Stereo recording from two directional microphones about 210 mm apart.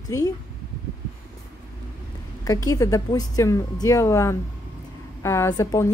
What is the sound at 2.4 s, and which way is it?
Speech, 15° left (ahead or behind).